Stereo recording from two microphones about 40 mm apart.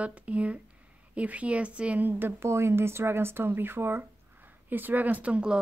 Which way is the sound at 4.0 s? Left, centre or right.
Right.